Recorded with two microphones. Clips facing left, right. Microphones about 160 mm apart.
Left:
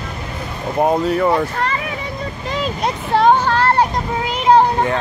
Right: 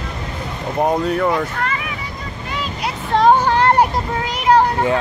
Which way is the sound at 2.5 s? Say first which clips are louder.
Left 4 dB; 40° left (ahead or behind).